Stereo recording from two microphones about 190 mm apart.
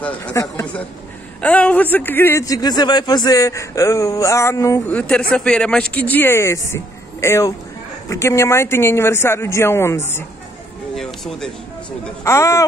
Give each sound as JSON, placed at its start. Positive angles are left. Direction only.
{"t": 0.0, "sound": "a man's voice", "side_deg": 5}
{"t": 1.4, "sound": "a man's voice", "side_deg": 5}
{"t": 11.0, "sound": "speech", "side_deg": 0}
{"t": 12.0, "sound": "a man's voice", "side_deg": 15}